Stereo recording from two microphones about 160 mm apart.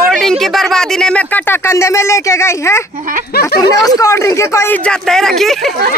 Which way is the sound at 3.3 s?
75° left (ahead or behind).